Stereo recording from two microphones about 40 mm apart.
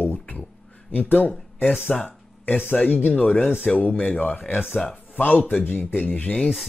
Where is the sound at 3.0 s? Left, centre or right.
Left.